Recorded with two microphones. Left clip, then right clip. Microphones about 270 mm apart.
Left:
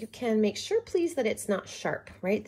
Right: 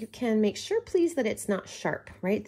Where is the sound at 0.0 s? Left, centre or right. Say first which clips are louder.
Even; right.